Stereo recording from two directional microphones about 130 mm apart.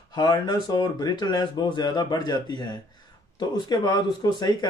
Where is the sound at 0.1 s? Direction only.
35° left (ahead or behind).